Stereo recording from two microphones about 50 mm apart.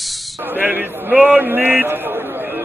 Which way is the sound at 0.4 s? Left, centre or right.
Right.